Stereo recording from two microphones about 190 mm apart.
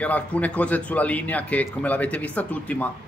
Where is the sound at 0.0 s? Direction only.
10° left (ahead or behind).